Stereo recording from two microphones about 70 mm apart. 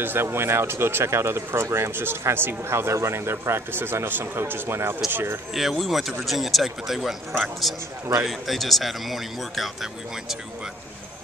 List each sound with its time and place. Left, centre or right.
0.0 s speech: right
5.5 s a man's voice: centre